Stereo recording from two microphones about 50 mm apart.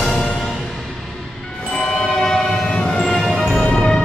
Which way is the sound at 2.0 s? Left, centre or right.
Centre.